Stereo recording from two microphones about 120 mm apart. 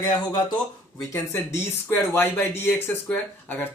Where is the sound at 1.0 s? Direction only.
25° left (ahead or behind).